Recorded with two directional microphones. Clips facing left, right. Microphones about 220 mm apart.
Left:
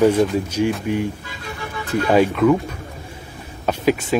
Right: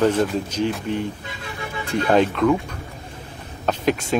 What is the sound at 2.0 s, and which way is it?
Speech, 5° left (ahead or behind).